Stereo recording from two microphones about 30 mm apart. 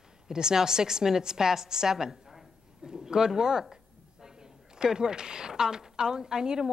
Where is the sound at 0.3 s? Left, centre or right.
Right.